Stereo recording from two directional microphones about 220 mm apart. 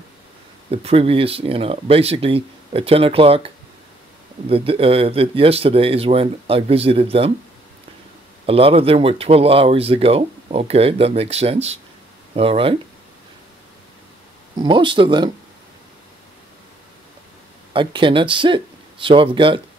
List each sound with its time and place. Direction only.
0.7 s speech: 25° right (ahead or behind)
8.5 s speech: 25° right (ahead or behind)
14.6 s speech: 20° right (ahead or behind)
17.7 s speech: 20° right (ahead or behind)